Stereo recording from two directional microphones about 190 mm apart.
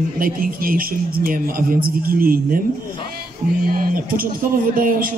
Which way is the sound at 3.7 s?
50° right (ahead or behind).